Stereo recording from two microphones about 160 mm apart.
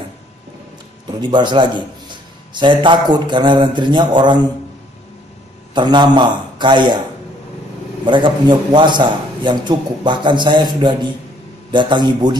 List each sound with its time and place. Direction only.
1.2 s a man's voice: 30° right (ahead or behind)
5.8 s a man's voice: 30° right (ahead or behind)
8.0 s a man's voice: 30° right (ahead or behind)